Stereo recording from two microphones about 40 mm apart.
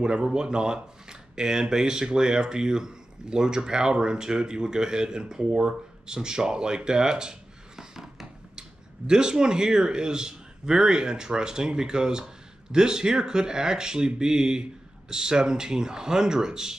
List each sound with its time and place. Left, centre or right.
0.0 s speech: centre